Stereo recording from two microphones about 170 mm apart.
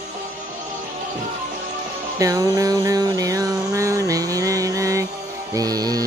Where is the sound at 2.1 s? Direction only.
20° right (ahead or behind).